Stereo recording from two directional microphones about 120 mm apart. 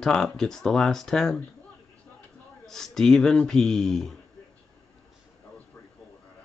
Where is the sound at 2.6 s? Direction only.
5° left (ahead or behind).